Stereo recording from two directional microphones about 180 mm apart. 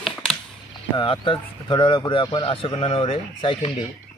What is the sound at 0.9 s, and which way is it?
Speech, 25° left (ahead or behind).